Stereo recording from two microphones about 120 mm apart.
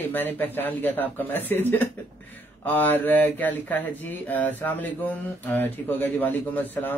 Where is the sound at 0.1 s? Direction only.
15° left (ahead or behind).